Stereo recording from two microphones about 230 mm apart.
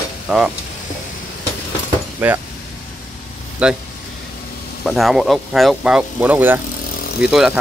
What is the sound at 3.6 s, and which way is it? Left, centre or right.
Speech, centre.